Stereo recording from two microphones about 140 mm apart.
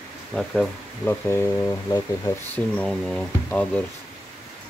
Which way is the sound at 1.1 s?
20° left (ahead or behind).